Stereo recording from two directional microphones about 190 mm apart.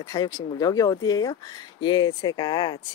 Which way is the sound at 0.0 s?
20° left (ahead or behind).